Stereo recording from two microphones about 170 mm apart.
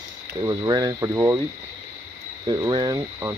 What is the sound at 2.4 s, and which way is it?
Speech, 25° right (ahead or behind).